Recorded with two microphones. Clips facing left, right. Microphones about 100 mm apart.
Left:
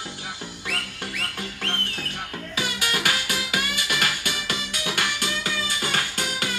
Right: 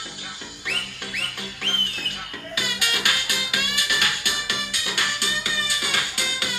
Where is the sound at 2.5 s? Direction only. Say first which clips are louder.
Left 1 dB; 30° left (ahead or behind).